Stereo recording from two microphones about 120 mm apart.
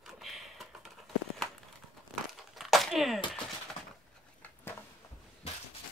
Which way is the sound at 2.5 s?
Centre (ahead or behind).